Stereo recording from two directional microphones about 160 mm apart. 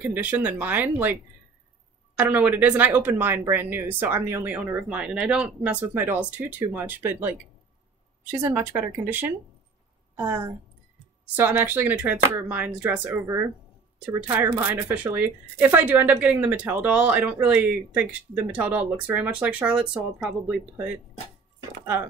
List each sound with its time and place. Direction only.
0.0 s speech: 10° right (ahead or behind)
2.1 s speech: 10° right (ahead or behind)
14.3 s speech: 10° right (ahead or behind)